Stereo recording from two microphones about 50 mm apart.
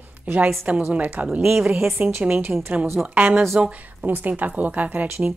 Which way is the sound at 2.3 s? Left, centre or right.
Right.